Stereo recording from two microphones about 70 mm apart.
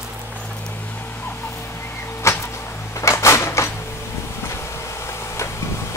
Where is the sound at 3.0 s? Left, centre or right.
Left.